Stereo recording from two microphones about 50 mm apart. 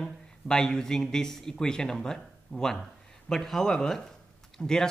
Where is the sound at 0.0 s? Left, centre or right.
Centre.